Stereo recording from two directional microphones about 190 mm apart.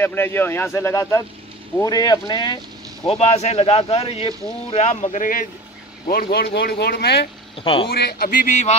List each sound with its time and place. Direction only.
0.0 s speech: 10° left (ahead or behind)
3.1 s speech: 35° left (ahead or behind); by 7.2 s 60° left (ahead or behind)
7.5 s speech: 25° left (ahead or behind)
7.9 s speech: 55° left (ahead or behind)